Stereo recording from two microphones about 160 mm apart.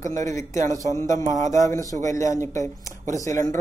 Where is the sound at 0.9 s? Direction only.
20° left (ahead or behind).